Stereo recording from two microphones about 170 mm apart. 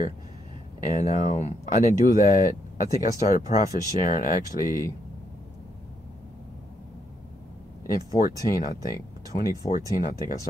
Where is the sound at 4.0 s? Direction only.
50° left (ahead or behind).